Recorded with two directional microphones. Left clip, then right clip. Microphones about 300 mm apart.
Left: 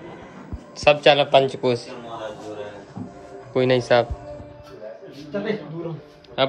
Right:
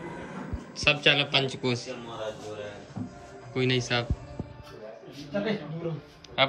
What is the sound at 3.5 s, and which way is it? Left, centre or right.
Speech, centre.